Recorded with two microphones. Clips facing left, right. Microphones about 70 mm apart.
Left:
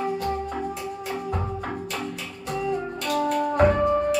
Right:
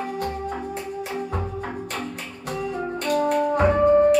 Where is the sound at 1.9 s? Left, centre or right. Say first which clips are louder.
Even; right.